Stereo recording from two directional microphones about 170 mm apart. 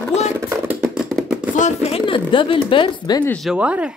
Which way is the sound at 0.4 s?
15° right (ahead or behind).